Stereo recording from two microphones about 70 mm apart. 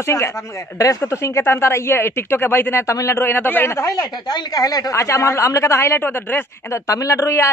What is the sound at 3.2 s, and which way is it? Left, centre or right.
Speech, left.